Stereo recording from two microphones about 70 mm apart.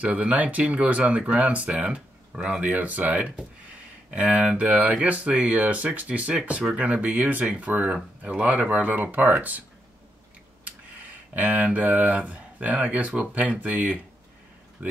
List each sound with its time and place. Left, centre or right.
0.0 s speech: right
10.6 s speech: right